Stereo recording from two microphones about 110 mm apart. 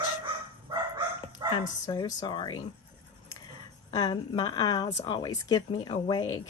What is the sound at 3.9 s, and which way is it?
Speech, 40° left (ahead or behind).